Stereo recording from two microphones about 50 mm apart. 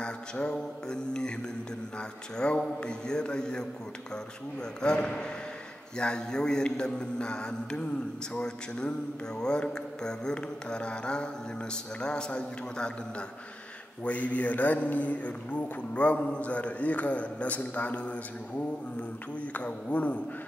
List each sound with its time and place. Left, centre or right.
0.0 s mantra: centre
4.8 s mantra: centre
14.0 s a man's voice: left
19.5 s a man's voice: left